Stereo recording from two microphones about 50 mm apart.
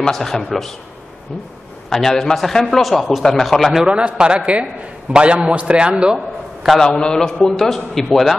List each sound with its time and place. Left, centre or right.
0.1 s a man's voice: centre
1.9 s a man's voice: centre
3.8 s a man's voice: right
6.1 s a sound: centre
6.8 s a man's voice: centre